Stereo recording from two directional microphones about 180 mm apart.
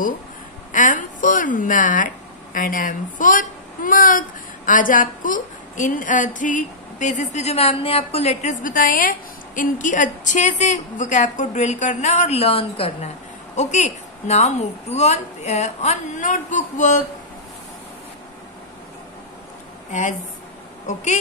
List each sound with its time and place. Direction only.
0.7 s a woman's voice: 45° left (ahead or behind)
19.9 s a woman's voice: 45° left (ahead or behind)